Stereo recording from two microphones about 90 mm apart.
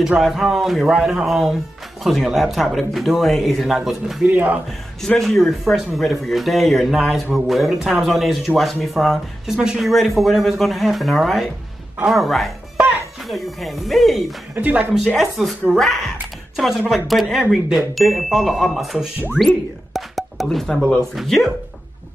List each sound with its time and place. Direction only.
0.0 s speech: 5° right (ahead or behind)
4.3 s speech: 20° right (ahead or behind)
4.6 s speech: 5° left (ahead or behind)
14.5 s speech: 20° right (ahead or behind)
15.1 s speech: centre (ahead or behind)